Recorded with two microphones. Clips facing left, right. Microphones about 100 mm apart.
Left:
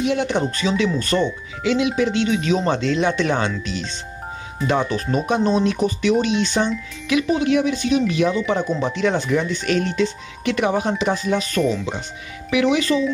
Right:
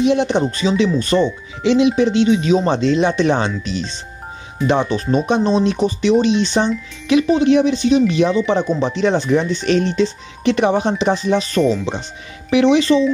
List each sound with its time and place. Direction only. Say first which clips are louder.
0.0 s speech: right 5 dB; 20° right (ahead or behind)